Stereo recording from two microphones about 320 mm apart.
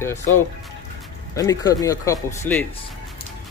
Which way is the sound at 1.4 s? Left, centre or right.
Centre.